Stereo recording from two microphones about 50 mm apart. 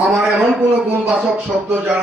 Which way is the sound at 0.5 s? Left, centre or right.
Centre.